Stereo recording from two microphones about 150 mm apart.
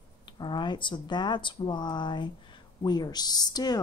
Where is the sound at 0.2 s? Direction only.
30° left (ahead or behind).